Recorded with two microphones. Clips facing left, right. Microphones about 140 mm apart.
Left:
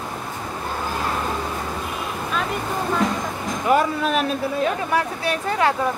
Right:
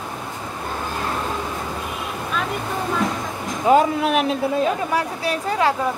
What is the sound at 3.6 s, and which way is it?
Speech, 20° right (ahead or behind).